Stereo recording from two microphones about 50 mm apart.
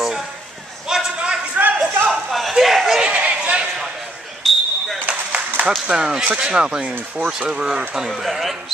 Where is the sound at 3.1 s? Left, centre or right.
Right.